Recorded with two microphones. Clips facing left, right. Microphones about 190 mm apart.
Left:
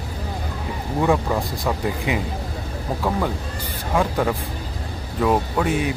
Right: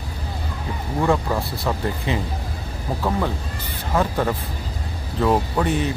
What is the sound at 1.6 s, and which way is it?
Speech, 15° left (ahead or behind).